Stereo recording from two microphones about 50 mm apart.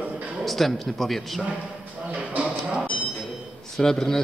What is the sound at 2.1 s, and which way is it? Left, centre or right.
Music, right.